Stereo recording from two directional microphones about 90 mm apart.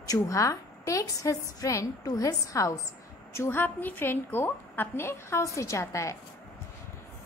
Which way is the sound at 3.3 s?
30° left (ahead or behind).